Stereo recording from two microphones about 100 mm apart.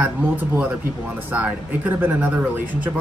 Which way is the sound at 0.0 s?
15° right (ahead or behind).